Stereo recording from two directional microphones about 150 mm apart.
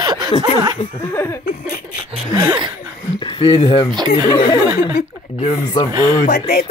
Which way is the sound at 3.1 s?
30° left (ahead or behind).